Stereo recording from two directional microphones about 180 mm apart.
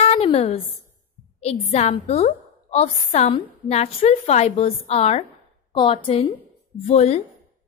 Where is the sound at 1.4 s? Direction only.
35° left (ahead or behind).